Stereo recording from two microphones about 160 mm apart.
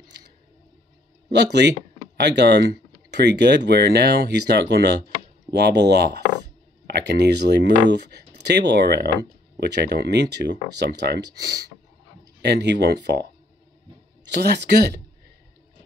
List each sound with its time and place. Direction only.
1.5 s speech: 90° right